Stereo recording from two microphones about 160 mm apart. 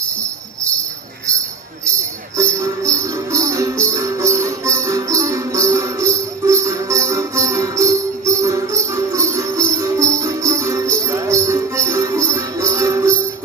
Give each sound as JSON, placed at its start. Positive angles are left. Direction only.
{"t": 2.3, "sound": "music", "side_deg": -20}